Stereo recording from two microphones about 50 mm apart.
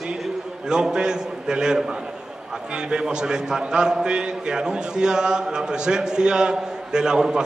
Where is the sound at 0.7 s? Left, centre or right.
Centre.